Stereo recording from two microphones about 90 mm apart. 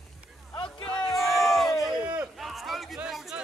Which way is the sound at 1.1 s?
Centre (ahead or behind).